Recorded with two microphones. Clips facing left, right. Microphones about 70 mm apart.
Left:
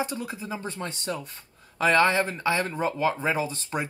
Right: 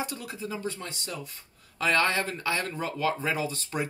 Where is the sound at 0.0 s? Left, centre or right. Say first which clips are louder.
Left 4 dB; left.